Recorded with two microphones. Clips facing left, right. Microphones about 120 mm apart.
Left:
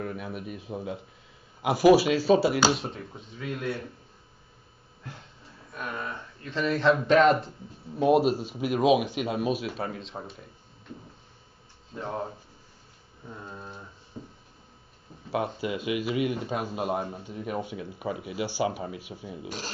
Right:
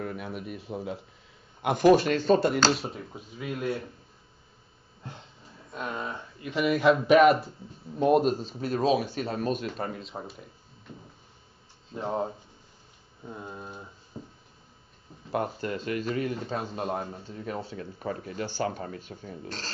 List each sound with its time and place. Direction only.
0.0 s speech: centre (ahead or behind)
5.7 s speech: 20° right (ahead or behind)
7.9 s a man's voice: 5° left (ahead or behind)
11.9 s speech: 20° right (ahead or behind)
13.3 s speech: 10° right (ahead or behind)
14.2 s a sound: 20° right (ahead or behind)
15.3 s a man's voice: 5° left (ahead or behind)